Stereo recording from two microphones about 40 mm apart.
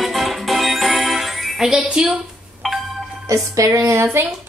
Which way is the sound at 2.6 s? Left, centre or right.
Centre.